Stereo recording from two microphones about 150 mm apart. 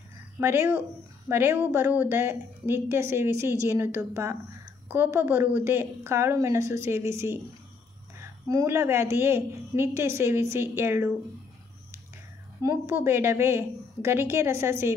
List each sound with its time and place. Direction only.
0.4 s a woman's voice: 15° right (ahead or behind)
12.6 s a woman's voice: 15° right (ahead or behind)